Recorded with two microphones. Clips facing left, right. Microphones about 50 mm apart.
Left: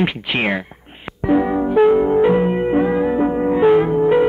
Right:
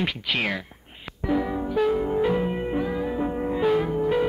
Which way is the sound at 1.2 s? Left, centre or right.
Left.